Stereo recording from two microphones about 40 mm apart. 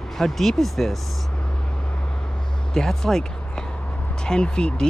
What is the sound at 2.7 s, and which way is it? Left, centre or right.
Speech, centre.